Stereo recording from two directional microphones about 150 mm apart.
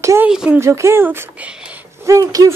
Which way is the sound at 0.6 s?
20° right (ahead or behind).